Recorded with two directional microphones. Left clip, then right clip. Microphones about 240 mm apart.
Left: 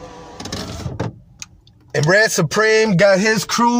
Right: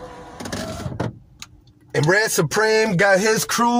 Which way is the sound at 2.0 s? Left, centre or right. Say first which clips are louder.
Left 4 dB; centre.